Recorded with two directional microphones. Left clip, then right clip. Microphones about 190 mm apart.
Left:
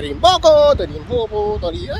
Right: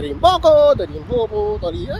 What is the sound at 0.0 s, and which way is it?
Speech, 5° left (ahead or behind).